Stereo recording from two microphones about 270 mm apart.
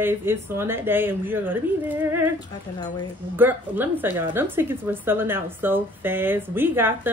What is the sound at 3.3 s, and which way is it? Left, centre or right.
Speech, centre.